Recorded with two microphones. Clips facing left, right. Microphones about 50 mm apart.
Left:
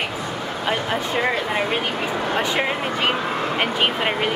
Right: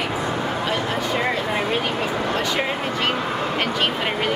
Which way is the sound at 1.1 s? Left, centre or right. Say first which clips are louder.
Left 2 dB; centre.